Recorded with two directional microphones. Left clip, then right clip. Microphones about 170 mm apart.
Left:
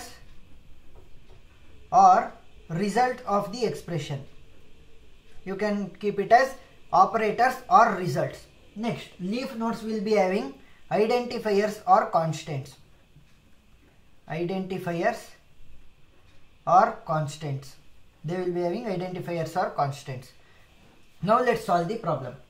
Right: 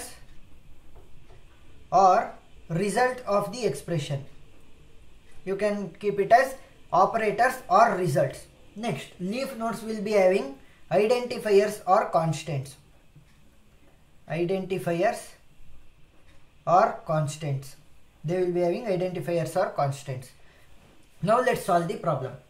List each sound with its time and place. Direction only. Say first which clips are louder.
1.9 s speech: left 2 dB; 25° right (ahead or behind)
5.4 s speech: right 2 dB; 25° right (ahead or behind)
9.6 s speech: left 1 dB; 35° right (ahead or behind)
14.2 s speech: right 3 dB; 25° right (ahead or behind)
16.6 s speech: left 1 dB; 25° right (ahead or behind)